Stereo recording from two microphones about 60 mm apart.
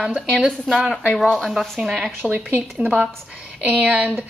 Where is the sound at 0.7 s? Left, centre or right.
Centre.